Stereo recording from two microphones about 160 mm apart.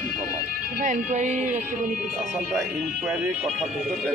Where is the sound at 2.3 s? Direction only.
Centre (ahead or behind).